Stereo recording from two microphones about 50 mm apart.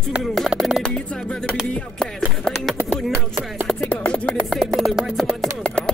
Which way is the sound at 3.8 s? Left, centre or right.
Left.